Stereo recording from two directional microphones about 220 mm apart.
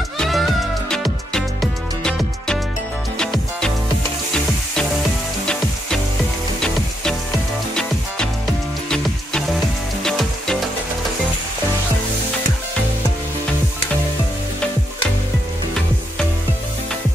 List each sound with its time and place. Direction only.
0.2 s music: centre (ahead or behind)
8.8 s music: 5° left (ahead or behind)